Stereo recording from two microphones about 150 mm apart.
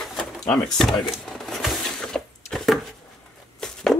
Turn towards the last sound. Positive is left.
turn(degrees=0)  # may be behind; listen again after turning